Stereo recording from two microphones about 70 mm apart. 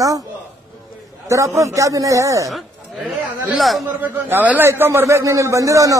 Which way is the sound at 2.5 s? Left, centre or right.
Centre.